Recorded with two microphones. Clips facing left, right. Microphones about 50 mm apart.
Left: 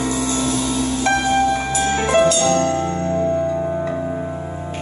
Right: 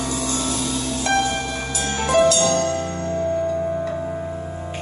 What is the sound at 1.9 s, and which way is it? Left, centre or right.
Music, left.